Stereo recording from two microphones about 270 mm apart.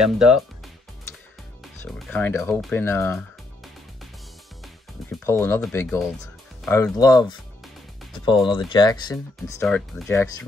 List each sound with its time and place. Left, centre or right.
0.0 s speech: centre
1.6 s speech: centre
5.2 s speech: centre
6.6 s speech: centre
9.6 s speech: centre